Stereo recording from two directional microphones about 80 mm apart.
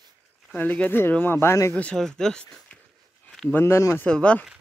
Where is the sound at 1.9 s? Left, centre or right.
Centre.